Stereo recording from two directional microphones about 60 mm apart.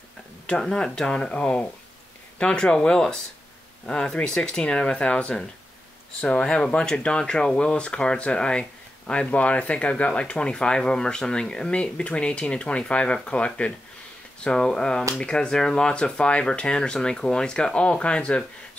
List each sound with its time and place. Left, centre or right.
0.5 s speech: centre